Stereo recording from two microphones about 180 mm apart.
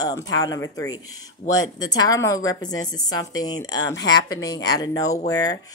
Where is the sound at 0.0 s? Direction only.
20° left (ahead or behind).